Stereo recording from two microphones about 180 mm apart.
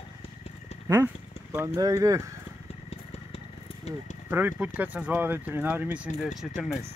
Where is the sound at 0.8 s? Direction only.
15° right (ahead or behind).